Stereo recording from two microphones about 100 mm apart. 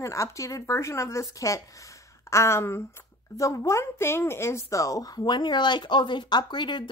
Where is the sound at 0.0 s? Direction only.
30° left (ahead or behind).